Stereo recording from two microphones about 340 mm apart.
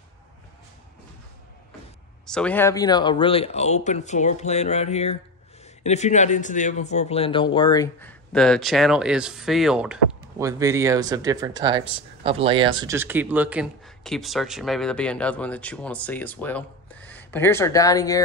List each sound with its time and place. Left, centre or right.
2.2 s speech: centre